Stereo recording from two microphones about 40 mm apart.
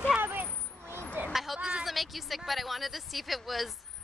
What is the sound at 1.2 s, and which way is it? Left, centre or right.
Speech, right.